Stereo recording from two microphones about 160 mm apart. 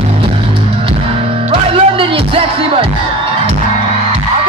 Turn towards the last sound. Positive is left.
turn(degrees=-35)  # may be behind; listen again after turning